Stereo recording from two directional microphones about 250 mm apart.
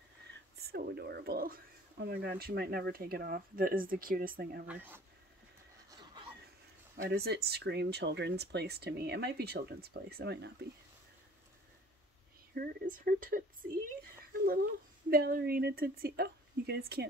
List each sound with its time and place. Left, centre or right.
0.7 s speech: right
4.6 s speech: centre
7.1 s speech: right
12.5 s speech: right